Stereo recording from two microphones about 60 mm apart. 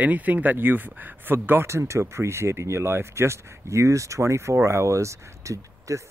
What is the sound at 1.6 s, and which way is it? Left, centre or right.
Speech, right.